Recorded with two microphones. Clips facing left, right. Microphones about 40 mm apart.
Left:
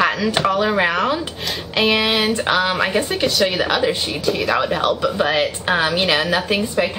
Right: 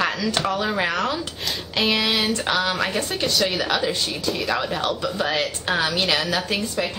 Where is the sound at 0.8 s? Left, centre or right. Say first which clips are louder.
Left 5 dB; left.